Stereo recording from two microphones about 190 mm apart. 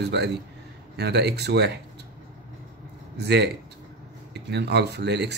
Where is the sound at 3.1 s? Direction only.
60° right (ahead or behind).